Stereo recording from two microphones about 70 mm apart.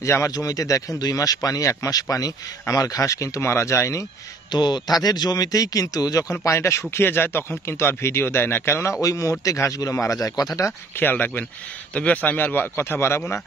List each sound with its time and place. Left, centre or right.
0.0 s speech: left
4.5 s a man's voice: left
5.0 s speech: left
6.4 s speech: left
9.0 s speech: left
11.0 s speech: left